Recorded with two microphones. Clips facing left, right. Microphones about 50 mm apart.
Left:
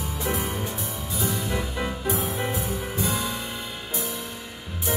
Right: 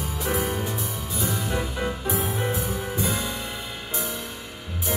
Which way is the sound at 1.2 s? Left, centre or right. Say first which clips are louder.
Even; right.